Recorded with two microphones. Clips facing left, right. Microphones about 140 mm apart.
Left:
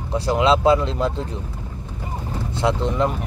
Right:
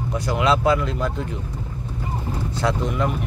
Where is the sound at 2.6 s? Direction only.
25° left (ahead or behind).